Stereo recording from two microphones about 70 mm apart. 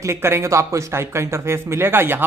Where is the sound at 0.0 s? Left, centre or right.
Right.